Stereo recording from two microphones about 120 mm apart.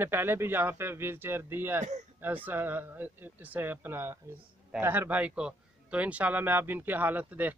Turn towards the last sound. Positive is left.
turn(degrees=-15)  # may be behind; listen again after turning